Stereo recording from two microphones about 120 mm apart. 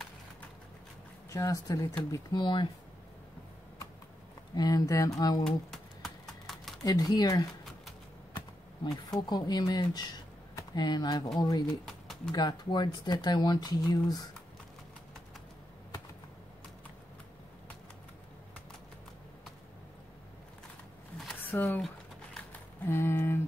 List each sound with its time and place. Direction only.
1.3 s speech: 25° left (ahead or behind)
4.6 s speech: 30° left (ahead or behind)
5.4 s typing: 5° left (ahead or behind)
6.8 s speech: 30° left (ahead or behind)
9.2 s speech: 35° left (ahead or behind)
21.5 s speech: 15° left (ahead or behind)
22.5 s typing: 20° left (ahead or behind)